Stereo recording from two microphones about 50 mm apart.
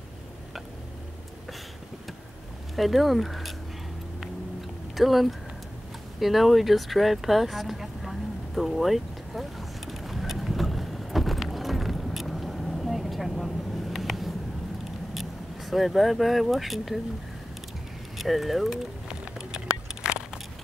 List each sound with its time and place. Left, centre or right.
2.7 s speech: centre
4.9 s speech: centre
6.1 s a sound: centre
15.1 s speech: centre
18.1 s speech: centre
19.0 s a sound: centre